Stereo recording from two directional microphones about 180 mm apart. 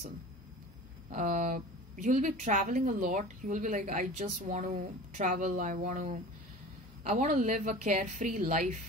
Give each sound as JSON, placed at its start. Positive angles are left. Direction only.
{"t": 1.1, "sound": "a woman's voice", "side_deg": -45}